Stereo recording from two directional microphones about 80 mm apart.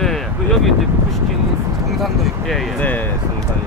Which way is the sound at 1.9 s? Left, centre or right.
Centre.